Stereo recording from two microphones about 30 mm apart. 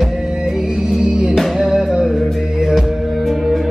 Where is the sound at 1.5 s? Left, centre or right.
Centre.